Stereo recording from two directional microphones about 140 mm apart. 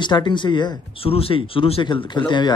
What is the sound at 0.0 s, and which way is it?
Speech, 35° left (ahead or behind).